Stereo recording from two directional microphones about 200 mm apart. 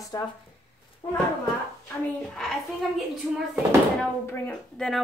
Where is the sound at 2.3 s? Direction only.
Centre (ahead or behind).